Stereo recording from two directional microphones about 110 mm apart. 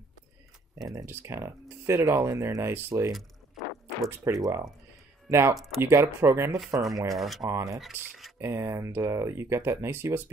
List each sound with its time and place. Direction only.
0.8 s speech: 25° right (ahead or behind)
4.2 s speech: 30° right (ahead or behind)
7.1 s speech: centre (ahead or behind)
7.4 s speech: 30° right (ahead or behind)